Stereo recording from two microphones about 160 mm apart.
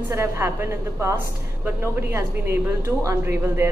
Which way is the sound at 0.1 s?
15° right (ahead or behind).